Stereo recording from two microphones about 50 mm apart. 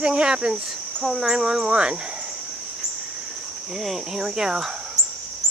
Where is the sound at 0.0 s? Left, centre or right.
Centre.